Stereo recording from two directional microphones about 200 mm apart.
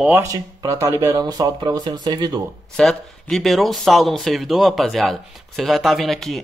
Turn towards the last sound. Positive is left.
turn(degrees=0)  # may be behind; listen again after turning